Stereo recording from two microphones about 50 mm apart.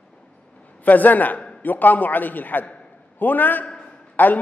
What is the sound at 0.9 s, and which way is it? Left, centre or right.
A man's voice, left.